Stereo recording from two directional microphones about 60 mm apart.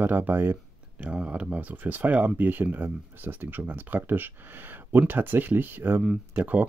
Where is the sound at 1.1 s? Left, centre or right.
Centre.